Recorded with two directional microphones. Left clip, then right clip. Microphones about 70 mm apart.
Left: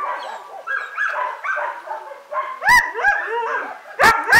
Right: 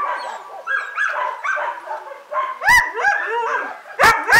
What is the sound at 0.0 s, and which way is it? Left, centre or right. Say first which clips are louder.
Dog: right 2 dB; right.